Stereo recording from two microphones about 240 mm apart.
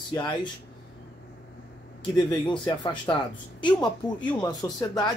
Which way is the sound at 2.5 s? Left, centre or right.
Centre.